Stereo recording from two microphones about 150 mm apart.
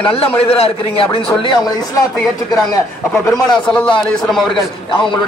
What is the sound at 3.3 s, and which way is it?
Speech, 25° left (ahead or behind).